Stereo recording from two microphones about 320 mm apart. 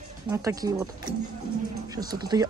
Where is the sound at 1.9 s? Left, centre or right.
Centre.